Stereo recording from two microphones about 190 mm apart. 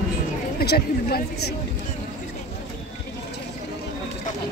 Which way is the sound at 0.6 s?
55° left (ahead or behind).